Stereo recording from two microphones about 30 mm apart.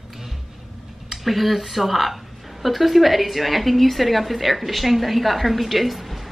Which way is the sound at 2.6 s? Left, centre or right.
Centre.